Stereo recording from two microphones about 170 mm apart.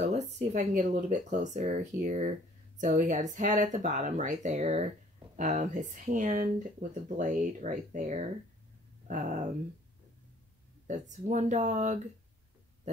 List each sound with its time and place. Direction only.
0.1 s speech: 40° right (ahead or behind)
10.9 s speech: 45° right (ahead or behind)